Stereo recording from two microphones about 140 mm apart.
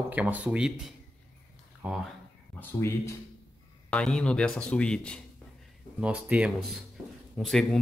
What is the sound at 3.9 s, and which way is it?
Speech, 5° left (ahead or behind).